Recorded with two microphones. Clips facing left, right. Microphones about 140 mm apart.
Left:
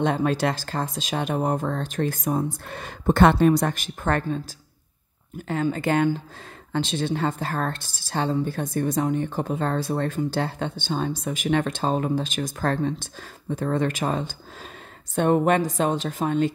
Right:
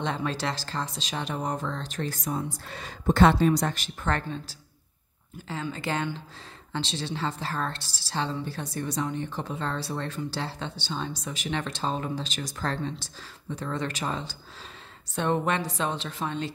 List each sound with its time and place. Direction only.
0.0 s a woman's voice: 50° left (ahead or behind)